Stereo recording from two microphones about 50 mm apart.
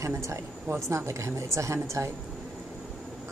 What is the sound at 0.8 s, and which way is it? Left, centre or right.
A woman's voice, right.